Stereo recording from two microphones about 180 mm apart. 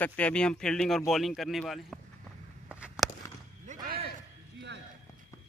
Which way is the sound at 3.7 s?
45° right (ahead or behind).